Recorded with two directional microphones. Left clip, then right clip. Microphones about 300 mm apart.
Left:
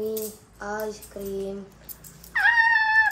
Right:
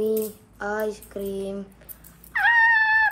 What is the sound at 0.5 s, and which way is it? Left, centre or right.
Speech, right.